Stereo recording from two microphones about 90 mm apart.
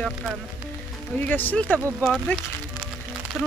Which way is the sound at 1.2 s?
20° left (ahead or behind).